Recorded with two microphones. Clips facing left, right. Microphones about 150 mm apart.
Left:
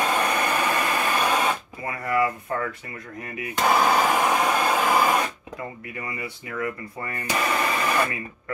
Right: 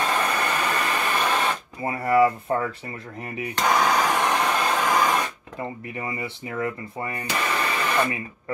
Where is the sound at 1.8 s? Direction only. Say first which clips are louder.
Right 6 dB; 30° right (ahead or behind).